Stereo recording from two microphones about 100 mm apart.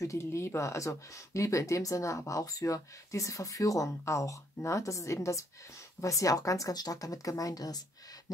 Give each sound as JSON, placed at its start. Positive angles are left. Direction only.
{"t": 0.0, "sound": "speech", "side_deg": 30}